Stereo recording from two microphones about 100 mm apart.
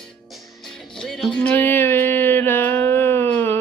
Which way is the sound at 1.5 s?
20° left (ahead or behind).